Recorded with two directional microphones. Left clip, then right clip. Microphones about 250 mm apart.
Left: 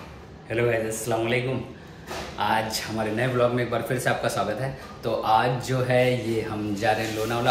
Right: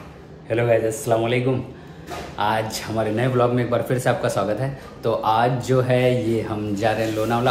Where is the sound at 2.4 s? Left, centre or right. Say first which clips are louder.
Right 2 dB; centre.